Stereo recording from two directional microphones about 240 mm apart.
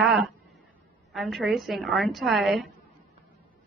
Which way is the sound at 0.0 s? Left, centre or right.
Centre.